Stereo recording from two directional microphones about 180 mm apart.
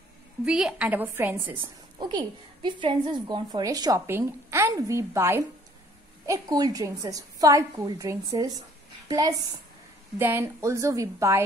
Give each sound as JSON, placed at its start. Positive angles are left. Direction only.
{"t": 0.5, "sound": "a woman's voice", "side_deg": -5}
{"t": 2.0, "sound": "a woman's voice", "side_deg": -25}
{"t": 10.1, "sound": "a woman's voice", "side_deg": -15}